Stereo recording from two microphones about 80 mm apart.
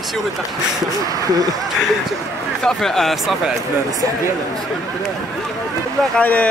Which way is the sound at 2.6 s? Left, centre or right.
Centre.